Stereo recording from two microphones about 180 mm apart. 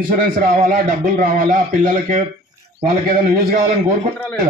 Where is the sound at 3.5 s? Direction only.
50° right (ahead or behind).